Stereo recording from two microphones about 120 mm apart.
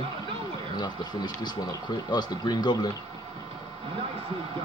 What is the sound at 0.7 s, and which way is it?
Speech, 35° left (ahead or behind).